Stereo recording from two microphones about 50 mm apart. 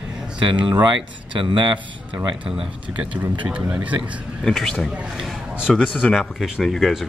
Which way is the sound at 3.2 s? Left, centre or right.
Right.